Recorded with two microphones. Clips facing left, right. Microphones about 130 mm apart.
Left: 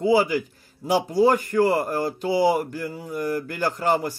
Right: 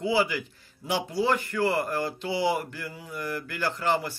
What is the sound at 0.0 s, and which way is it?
Speech, 45° left (ahead or behind).